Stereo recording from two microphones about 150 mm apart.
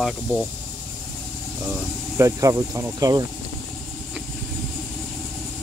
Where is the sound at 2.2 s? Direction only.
20° right (ahead or behind).